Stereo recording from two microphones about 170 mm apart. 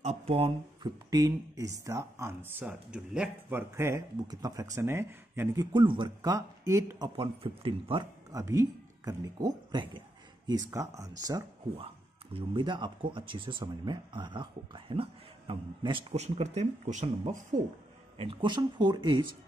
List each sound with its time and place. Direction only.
0.0 s speech: 40° right (ahead or behind)
1.1 s speech: 20° right (ahead or behind)
5.7 s speech: 25° right (ahead or behind)
7.2 s speech: 30° right (ahead or behind)
8.4 s speech: 20° right (ahead or behind); by 17.1 s 40° right (ahead or behind)
18.1 s speech: 35° right (ahead or behind)